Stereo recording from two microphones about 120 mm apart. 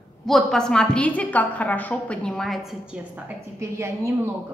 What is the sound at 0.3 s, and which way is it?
A woman's voice, centre (ahead or behind).